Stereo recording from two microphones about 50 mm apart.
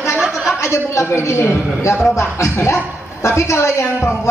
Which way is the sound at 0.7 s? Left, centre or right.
Left.